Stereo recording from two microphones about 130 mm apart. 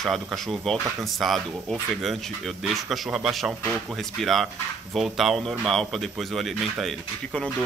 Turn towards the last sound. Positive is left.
turn(degrees=0)  # may be behind; listen again after turning